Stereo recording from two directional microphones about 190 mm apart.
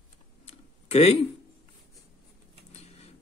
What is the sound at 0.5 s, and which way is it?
Tick-tock, 35° left (ahead or behind).